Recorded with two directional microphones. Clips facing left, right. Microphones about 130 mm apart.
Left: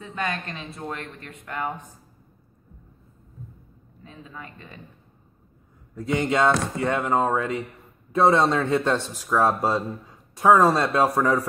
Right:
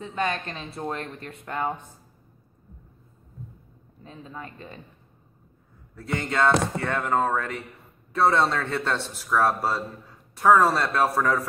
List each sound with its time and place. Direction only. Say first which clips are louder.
0.0 s a woman's voice: right 2 dB; 25° right (ahead or behind)
4.0 s speech: right 2 dB; 35° right (ahead or behind)
5.9 s speech: left 4 dB; 15° left (ahead or behind)